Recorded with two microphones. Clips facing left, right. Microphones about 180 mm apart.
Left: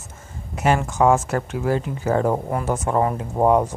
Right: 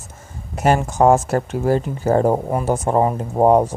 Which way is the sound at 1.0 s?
35° right (ahead or behind).